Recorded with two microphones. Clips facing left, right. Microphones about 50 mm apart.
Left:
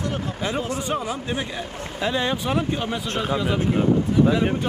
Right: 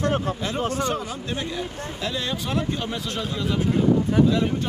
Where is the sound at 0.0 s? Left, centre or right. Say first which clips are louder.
Right 3 dB; right.